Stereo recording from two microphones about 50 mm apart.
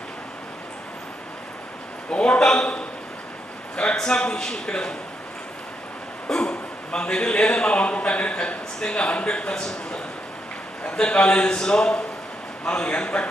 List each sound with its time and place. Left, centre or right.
2.0 s a man's voice: left
3.9 s a man's voice: centre
6.2 s speech: centre
10.8 s a man's voice: left